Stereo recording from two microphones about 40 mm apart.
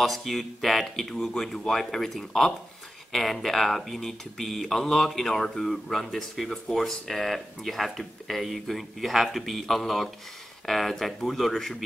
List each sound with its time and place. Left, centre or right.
0.0 s speech: centre
1.1 s speech: centre
1.8 s speech: centre